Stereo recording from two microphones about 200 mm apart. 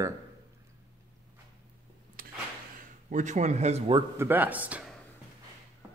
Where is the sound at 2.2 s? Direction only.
45° right (ahead or behind).